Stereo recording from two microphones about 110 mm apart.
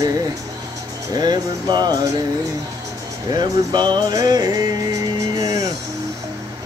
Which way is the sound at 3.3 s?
40° right (ahead or behind).